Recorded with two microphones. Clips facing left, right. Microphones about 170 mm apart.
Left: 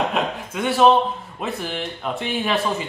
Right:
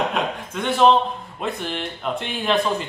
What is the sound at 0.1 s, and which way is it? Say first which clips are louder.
A woman's voice: left 1 dB; 5° left (ahead or behind).